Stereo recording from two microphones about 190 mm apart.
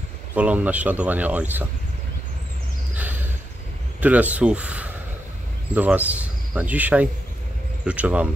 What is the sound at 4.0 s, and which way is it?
Speech, 10° right (ahead or behind).